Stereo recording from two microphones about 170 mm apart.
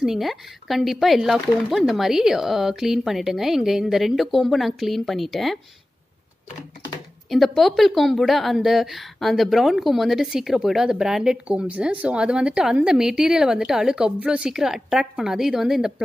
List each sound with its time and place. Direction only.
0.0 s a woman's voice: centre (ahead or behind)
7.2 s a woman's voice: centre (ahead or behind)